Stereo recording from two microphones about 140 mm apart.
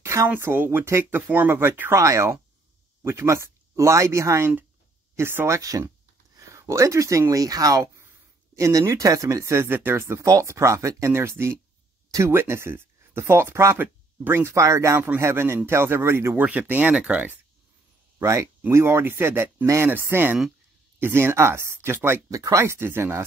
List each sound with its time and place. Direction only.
0.0 s speech: 20° right (ahead or behind)
18.2 s speech: 20° right (ahead or behind)